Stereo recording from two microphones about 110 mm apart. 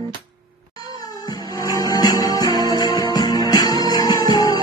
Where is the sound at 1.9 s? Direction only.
35° left (ahead or behind).